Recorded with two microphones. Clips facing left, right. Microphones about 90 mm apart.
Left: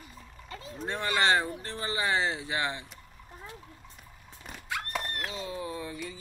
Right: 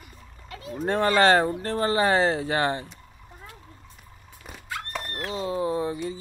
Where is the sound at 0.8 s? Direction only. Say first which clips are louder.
Right 8 dB; 55° right (ahead or behind).